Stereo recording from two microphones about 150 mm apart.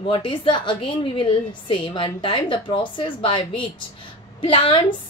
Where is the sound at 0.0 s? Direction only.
35° left (ahead or behind).